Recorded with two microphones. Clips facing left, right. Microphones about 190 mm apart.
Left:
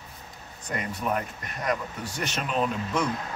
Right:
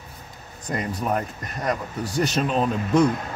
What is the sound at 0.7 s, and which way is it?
Speech, 40° right (ahead or behind).